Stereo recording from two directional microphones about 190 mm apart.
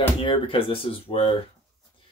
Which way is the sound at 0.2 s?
25° left (ahead or behind).